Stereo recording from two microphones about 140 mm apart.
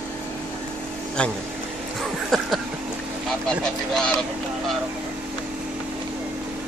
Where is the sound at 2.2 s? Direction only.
Centre (ahead or behind).